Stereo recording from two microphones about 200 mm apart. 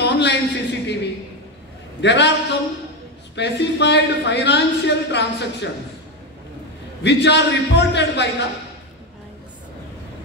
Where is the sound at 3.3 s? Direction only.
60° left (ahead or behind).